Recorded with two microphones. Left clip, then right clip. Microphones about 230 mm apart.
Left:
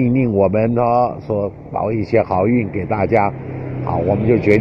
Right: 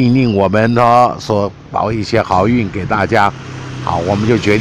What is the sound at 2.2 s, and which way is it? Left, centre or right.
Speech, right.